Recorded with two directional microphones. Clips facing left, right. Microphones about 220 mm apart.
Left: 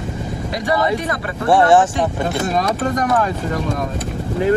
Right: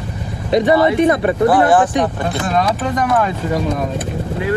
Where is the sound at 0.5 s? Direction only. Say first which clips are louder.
Right 7 dB; 25° right (ahead or behind).